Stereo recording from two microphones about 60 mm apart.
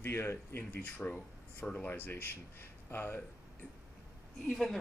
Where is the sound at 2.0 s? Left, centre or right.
Left.